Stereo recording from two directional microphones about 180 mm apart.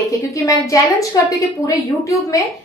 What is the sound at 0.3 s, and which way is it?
A woman's voice, 20° left (ahead or behind).